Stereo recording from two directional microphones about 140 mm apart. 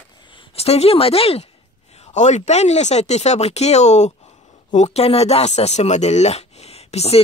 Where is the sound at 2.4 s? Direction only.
50° left (ahead or behind).